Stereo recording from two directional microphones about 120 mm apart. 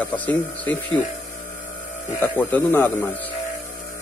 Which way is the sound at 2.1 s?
15° left (ahead or behind).